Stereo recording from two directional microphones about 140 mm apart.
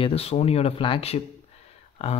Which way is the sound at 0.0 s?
45° left (ahead or behind).